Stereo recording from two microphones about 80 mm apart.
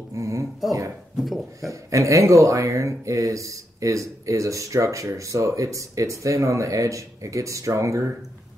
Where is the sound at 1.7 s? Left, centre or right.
Right.